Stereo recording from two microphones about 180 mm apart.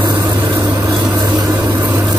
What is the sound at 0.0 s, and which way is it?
Vehicle, 20° right (ahead or behind).